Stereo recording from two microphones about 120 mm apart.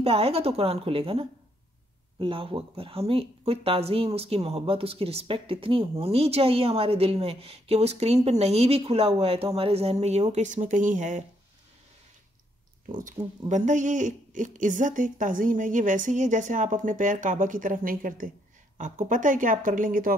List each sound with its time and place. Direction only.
0.0 s speech: 55° right (ahead or behind)
10.3 s speech: 90° right
12.8 s speech: 90° right